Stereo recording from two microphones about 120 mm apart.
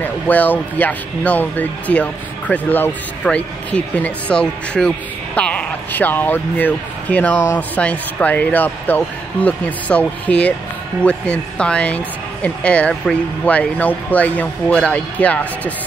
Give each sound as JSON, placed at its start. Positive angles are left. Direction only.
{"t": 0.0, "sound": "speech", "side_deg": 15}